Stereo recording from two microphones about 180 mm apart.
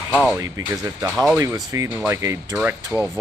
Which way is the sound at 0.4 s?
20° right (ahead or behind).